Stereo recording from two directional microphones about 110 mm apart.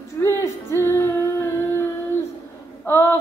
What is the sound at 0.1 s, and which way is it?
Female singing, 25° left (ahead or behind).